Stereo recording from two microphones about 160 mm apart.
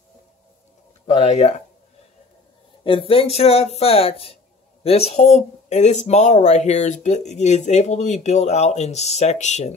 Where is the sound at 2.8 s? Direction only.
35° left (ahead or behind).